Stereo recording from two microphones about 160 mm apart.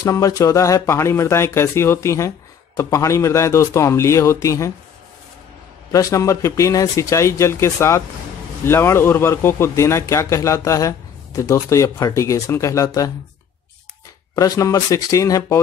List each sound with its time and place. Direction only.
0.0 s speech: 20° left (ahead or behind)
5.9 s speech: 20° left (ahead or behind)
14.3 s speech: 20° left (ahead or behind)